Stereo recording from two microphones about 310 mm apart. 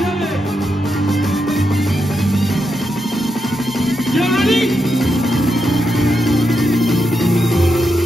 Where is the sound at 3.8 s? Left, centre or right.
Centre.